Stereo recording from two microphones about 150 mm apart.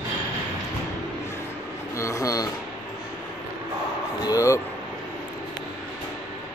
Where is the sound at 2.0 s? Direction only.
20° left (ahead or behind).